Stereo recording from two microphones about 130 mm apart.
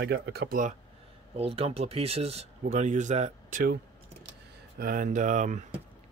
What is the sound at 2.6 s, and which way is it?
Speech, 65° right (ahead or behind).